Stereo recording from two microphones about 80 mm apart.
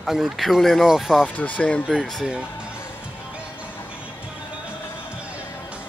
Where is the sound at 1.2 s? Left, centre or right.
Centre.